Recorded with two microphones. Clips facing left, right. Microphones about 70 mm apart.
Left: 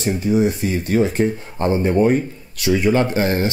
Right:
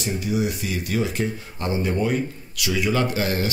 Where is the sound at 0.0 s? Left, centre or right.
Left.